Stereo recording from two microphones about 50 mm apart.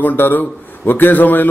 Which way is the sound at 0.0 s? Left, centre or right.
Left.